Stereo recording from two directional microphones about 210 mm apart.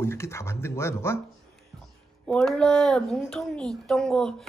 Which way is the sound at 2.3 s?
5° left (ahead or behind).